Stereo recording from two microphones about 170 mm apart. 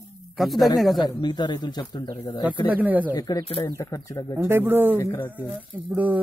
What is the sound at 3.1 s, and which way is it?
Speech, 20° left (ahead or behind).